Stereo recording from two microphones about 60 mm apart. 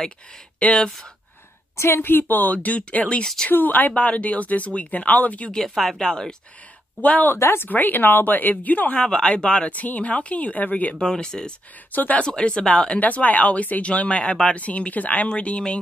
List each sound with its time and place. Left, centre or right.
0.6 s speech: left
1.8 s speech: left
5.5 s speech: centre
7.0 s speech: left
7.3 s speech: left
9.0 s speech: centre
11.0 s speech: centre
11.9 s speech: left
12.2 s speech: centre